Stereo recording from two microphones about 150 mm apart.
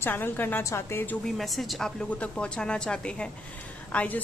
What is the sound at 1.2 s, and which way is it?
A woman's voice, centre (ahead or behind).